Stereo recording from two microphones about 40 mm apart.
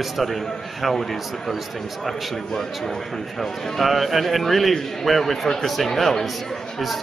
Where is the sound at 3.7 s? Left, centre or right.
Centre.